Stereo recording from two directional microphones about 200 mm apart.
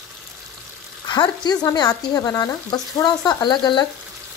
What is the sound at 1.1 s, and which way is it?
Speech, 20° left (ahead or behind).